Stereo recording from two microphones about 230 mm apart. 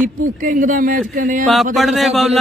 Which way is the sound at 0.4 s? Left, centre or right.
Right.